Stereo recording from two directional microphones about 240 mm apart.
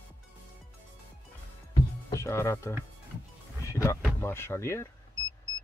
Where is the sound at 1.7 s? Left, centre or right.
Centre.